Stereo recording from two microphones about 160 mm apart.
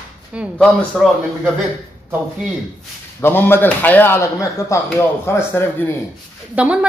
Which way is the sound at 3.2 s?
15° left (ahead or behind).